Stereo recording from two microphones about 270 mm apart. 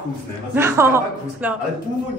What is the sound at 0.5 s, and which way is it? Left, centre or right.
Speech, centre.